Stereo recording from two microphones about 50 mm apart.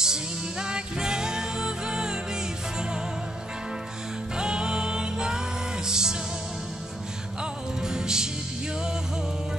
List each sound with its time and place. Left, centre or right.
0.0 s music: centre
4.4 s music: centre
7.8 s music: centre